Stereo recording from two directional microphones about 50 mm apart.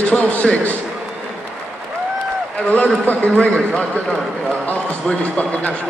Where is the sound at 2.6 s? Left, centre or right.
Left.